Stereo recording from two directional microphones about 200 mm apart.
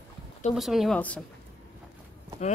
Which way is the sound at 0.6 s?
Centre (ahead or behind).